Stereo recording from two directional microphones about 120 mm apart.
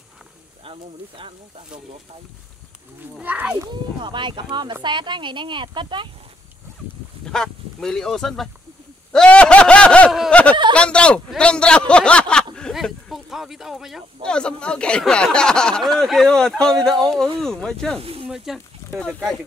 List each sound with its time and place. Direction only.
0.7 s speech: 45° right (ahead or behind)
3.2 s a child's voice: 10° right (ahead or behind)
4.0 s speech: 40° right (ahead or behind)
7.2 s speech: 5° left (ahead or behind)
9.1 s a sound: 10° left (ahead or behind)
10.7 s a man's voice: 10° left (ahead or behind)
18.9 s a man's voice: 10° left (ahead or behind)